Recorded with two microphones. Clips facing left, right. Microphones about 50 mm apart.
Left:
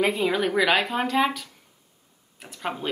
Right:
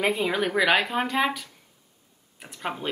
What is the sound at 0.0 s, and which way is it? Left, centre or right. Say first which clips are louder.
Speech: left 2 dB; centre.